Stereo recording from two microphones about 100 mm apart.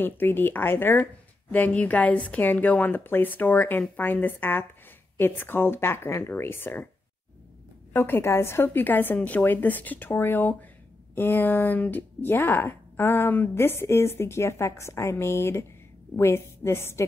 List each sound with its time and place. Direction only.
0.0 s a woman's voice: 20° left (ahead or behind)
7.9 s speech: 25° left (ahead or behind)